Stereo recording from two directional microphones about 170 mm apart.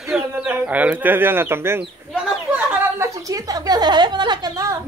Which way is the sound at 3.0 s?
20° right (ahead or behind).